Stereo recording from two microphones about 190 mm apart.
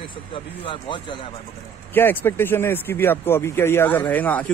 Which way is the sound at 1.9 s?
10° left (ahead or behind).